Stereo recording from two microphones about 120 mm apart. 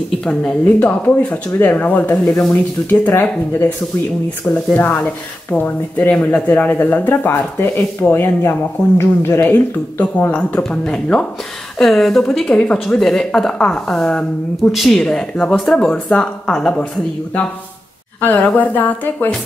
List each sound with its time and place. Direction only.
0.2 s speech: 10° left (ahead or behind)
4.7 s speech: 15° left (ahead or behind)
18.2 s speech: 15° left (ahead or behind)